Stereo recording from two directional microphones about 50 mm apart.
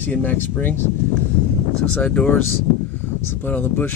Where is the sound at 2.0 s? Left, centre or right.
Left.